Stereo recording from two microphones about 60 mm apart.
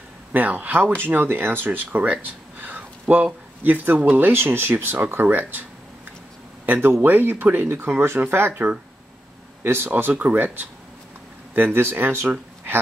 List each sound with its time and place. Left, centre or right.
0.3 s speech: right
2.6 s a sound: right
3.6 s speech: right
9.8 s speech: right